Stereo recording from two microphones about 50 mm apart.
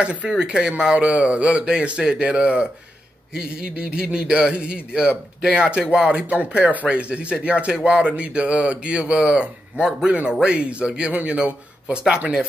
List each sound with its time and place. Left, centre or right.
0.0 s speech: right
10.0 s speech: right